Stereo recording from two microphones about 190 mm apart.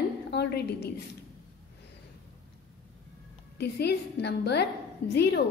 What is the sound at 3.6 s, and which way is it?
A woman's voice, 60° left (ahead or behind).